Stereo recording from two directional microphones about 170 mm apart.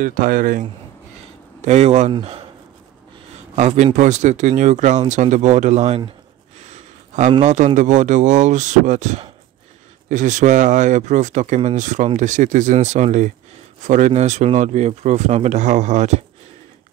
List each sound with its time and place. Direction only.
0.0 s speech: 55° right (ahead or behind)
1.6 s speech: 40° right (ahead or behind)
3.5 s a man's voice: 40° right (ahead or behind)